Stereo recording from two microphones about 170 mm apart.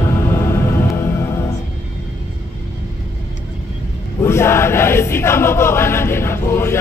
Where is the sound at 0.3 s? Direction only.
15° left (ahead or behind).